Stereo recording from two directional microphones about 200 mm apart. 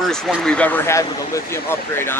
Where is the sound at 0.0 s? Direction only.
Centre (ahead or behind).